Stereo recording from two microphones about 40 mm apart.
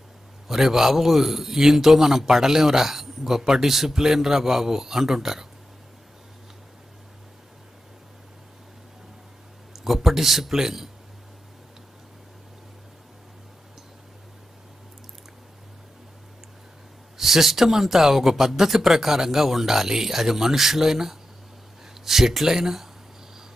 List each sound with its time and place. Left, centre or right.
0.5 s a man's voice: centre
9.8 s a man's voice: centre
17.2 s a man's voice: centre